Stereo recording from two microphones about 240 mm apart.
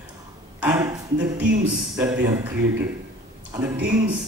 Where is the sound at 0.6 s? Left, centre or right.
Centre.